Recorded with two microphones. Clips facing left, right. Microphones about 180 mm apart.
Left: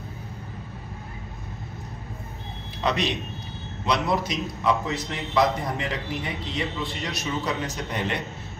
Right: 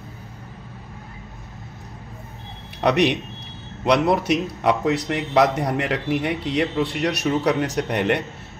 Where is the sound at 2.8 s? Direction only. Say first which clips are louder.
Right 7 dB; 65° right (ahead or behind).